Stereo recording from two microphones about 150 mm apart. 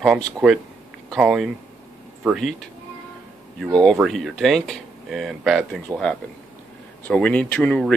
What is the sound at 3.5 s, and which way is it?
Speech, centre (ahead or behind).